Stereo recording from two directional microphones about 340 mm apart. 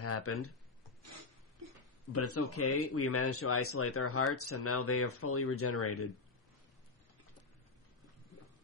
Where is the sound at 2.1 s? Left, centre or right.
Left.